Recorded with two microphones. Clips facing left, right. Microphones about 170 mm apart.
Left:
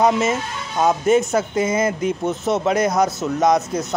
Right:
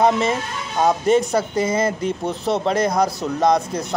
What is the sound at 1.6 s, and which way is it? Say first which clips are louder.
Speech: left 1 dB; 30° right (ahead or behind).